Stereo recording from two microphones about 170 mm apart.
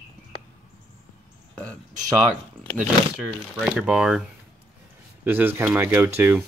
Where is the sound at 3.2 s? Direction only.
5° right (ahead or behind).